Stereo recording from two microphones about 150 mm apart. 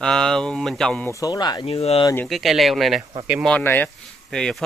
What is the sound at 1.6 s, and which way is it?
Speech, 40° left (ahead or behind).